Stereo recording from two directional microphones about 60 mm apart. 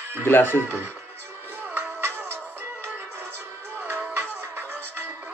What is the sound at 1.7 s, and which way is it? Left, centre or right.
Music, right.